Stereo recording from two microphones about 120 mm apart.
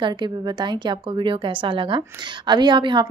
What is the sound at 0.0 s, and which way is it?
A woman's voice, 40° right (ahead or behind).